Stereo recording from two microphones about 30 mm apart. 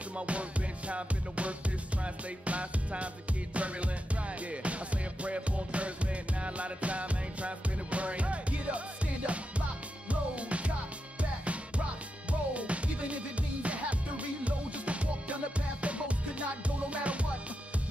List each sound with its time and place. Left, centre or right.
0.3 s music: right
5.2 s music: right